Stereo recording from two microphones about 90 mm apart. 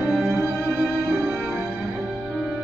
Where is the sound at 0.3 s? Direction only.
30° right (ahead or behind).